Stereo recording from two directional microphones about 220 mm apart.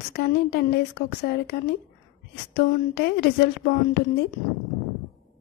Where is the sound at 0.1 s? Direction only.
45° left (ahead or behind).